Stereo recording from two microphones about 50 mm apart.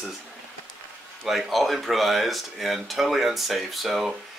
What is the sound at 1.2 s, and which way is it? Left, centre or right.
Speech, centre.